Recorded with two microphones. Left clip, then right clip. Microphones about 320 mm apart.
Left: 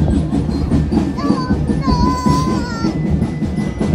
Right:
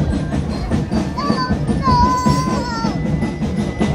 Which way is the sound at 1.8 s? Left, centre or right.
Right.